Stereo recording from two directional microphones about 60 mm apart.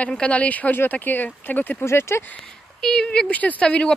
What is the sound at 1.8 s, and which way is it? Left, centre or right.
Speech, left.